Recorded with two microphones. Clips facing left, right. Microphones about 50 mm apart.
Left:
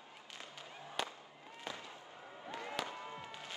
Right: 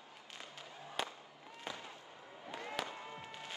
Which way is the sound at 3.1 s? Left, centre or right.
Right.